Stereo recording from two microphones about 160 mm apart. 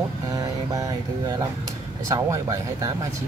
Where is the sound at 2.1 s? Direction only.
20° right (ahead or behind).